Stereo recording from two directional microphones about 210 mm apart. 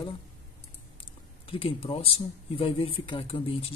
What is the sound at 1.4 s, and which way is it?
Speech, 25° left (ahead or behind).